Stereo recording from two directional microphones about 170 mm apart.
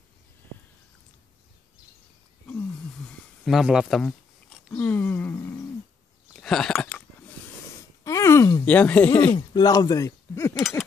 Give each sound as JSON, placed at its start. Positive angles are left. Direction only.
{"t": 3.4, "sound": "a sound", "side_deg": -5}
{"t": 8.0, "sound": "groan", "side_deg": 20}
{"t": 8.6, "sound": "speech", "side_deg": 10}
{"t": 9.5, "sound": "speech", "side_deg": 25}